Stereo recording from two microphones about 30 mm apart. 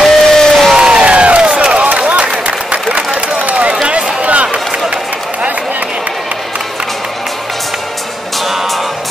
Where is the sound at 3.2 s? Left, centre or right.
Right.